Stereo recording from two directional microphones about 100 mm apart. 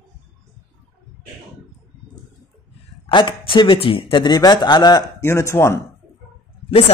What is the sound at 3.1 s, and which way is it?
Speech, 55° left (ahead or behind).